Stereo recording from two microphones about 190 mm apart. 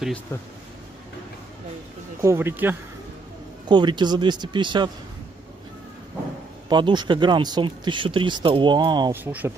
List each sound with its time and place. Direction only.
0.3 s speech: 15° left (ahead or behind)
2.2 s speech: 10° right (ahead or behind)
3.6 s speech: 25° right (ahead or behind)
6.7 s speech: 25° right (ahead or behind)
9.1 s speech: 10° right (ahead or behind)